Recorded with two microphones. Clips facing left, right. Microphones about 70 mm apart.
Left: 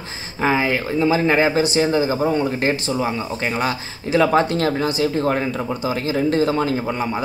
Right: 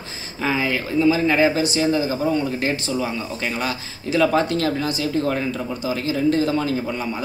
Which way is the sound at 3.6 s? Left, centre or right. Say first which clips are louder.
Left 3 dB; left.